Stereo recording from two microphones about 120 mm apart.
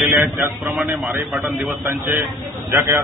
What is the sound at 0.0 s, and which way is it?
Speech, 25° right (ahead or behind).